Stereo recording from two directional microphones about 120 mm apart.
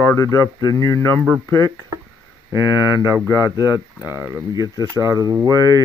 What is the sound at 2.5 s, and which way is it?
Speech, 25° right (ahead or behind).